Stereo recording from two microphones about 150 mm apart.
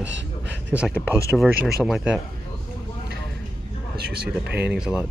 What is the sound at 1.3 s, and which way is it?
Speech, 10° right (ahead or behind).